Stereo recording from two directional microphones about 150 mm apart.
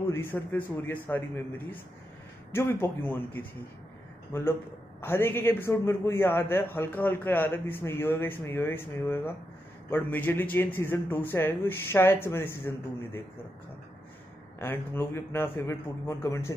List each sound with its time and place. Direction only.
0.0 s a man's voice: 15° left (ahead or behind)
5.0 s a man's voice: 15° left (ahead or behind)
14.6 s a man's voice: 15° left (ahead or behind)